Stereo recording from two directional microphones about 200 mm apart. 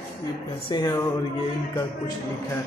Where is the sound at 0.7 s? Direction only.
20° left (ahead or behind).